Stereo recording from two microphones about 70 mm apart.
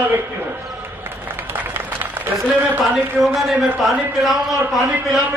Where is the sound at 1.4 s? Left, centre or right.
Right.